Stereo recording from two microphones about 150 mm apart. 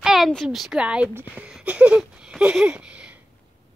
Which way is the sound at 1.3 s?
10° right (ahead or behind).